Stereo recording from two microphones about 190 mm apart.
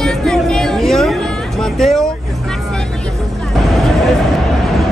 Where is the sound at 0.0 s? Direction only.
5° left (ahead or behind).